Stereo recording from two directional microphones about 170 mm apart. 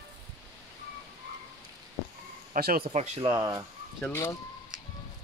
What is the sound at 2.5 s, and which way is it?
Speech, 60° right (ahead or behind).